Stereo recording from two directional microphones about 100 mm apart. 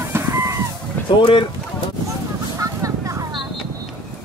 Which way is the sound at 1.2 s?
55° left (ahead or behind).